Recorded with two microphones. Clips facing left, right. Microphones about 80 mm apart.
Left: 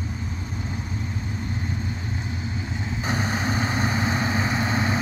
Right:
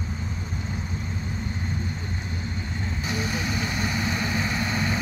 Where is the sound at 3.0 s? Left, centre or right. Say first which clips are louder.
Left 3 dB; left.